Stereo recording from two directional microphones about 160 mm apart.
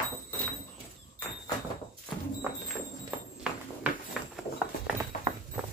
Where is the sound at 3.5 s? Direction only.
5° right (ahead or behind).